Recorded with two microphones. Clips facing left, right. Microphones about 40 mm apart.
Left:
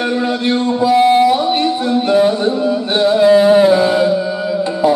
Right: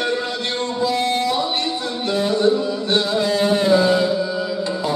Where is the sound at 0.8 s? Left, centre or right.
Centre.